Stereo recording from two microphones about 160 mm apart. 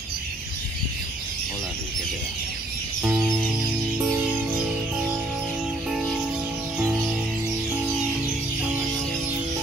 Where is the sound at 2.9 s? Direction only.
10° right (ahead or behind).